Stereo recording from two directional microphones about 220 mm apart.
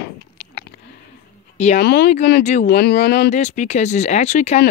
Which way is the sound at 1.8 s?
50° left (ahead or behind).